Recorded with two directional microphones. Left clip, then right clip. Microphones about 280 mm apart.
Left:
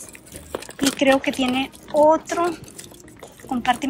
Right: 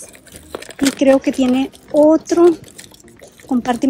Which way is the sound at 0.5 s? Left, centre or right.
Centre.